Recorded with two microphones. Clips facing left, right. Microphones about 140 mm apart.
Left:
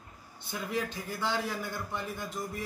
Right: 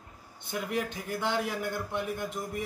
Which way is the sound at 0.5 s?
15° right (ahead or behind).